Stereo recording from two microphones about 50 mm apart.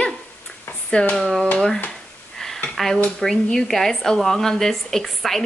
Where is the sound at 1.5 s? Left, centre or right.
Centre.